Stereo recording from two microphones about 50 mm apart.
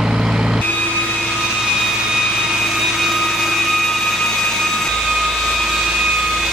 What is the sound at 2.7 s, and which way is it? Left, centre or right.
Vehicle, centre.